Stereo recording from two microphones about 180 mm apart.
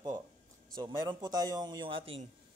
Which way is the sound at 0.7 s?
25° right (ahead or behind).